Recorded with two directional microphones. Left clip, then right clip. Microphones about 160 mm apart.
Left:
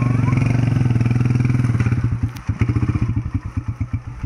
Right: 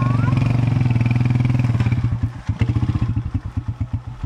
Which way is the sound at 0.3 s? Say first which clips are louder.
Left 1 dB; 15° left (ahead or behind).